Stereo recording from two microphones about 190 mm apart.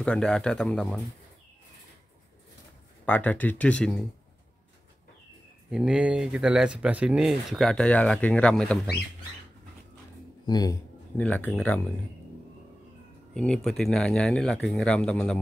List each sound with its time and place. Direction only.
0.0 s speech: 5° left (ahead or behind)
3.1 s speech: 10° left (ahead or behind)
5.7 s speech: 5° right (ahead or behind)
10.4 s speech: 20° left (ahead or behind)
11.1 s speech: 10° left (ahead or behind)
13.3 s speech: 5° left (ahead or behind)